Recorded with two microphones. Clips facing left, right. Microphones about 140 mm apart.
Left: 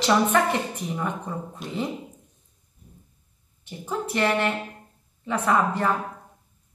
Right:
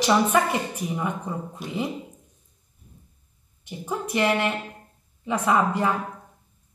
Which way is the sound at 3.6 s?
15° right (ahead or behind).